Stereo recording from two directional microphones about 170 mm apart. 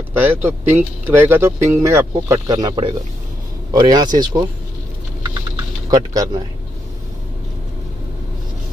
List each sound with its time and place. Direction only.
0.1 s speech: 10° right (ahead or behind)
5.9 s speech: 20° right (ahead or behind)